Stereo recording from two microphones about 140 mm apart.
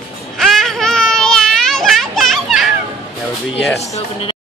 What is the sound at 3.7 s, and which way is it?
Speech, 50° left (ahead or behind).